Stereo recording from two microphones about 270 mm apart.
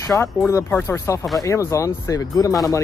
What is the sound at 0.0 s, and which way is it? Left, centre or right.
Speech, centre.